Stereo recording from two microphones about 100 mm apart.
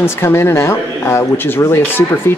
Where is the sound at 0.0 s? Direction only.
25° left (ahead or behind).